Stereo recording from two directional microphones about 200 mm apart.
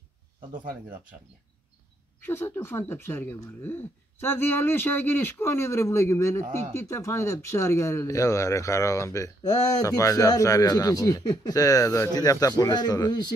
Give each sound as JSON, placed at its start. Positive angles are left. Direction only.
{"t": 0.5, "sound": "speech", "side_deg": -45}
{"t": 2.2, "sound": "speech", "side_deg": 10}